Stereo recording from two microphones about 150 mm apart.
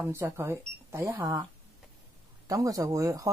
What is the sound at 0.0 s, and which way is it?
Speech, 15° right (ahead or behind).